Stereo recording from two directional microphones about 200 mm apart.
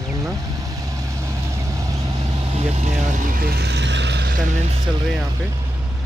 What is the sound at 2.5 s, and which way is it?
Speech, 35° right (ahead or behind).